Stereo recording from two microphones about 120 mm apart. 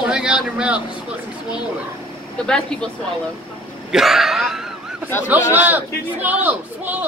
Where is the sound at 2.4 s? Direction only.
5° left (ahead or behind).